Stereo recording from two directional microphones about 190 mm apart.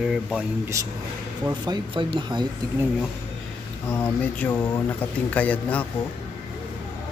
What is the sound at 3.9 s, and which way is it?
Speech, 10° left (ahead or behind).